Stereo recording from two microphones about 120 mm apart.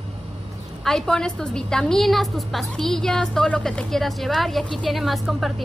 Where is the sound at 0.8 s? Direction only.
5° left (ahead or behind).